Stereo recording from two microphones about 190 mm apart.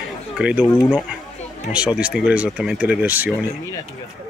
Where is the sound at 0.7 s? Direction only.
10° left (ahead or behind).